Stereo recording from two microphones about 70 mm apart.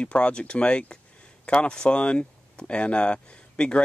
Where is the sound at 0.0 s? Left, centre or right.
Centre.